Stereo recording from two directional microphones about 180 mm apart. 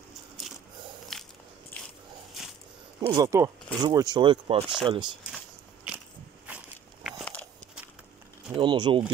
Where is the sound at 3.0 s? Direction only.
20° right (ahead or behind).